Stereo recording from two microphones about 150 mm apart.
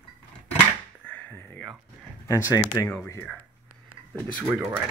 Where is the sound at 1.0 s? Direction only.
10° left (ahead or behind).